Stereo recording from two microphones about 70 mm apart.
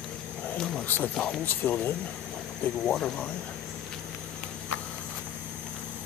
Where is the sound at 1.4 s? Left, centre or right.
Left.